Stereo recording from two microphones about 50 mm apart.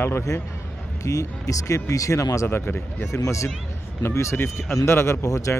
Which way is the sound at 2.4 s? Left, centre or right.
Left.